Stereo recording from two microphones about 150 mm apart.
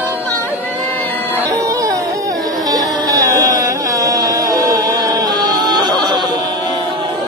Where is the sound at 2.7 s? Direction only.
25° right (ahead or behind).